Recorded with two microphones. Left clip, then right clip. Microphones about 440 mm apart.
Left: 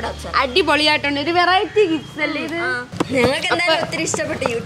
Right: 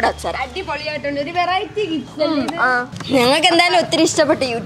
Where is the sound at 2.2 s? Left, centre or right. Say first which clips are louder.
Right 7 dB; right.